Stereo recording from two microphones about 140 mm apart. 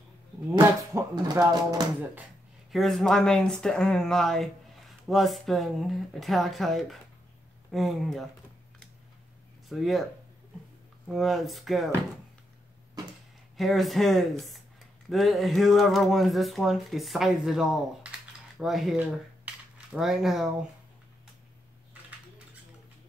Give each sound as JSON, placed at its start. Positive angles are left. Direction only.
{"t": 0.5, "sound": "speech", "side_deg": -25}
{"t": 2.7, "sound": "speech", "side_deg": 0}
{"t": 9.7, "sound": "speech", "side_deg": 0}
{"t": 11.1, "sound": "speech", "side_deg": 0}
{"t": 13.6, "sound": "speech", "side_deg": 0}